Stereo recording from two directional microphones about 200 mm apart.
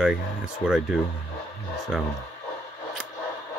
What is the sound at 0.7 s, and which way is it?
Speech, centre (ahead or behind).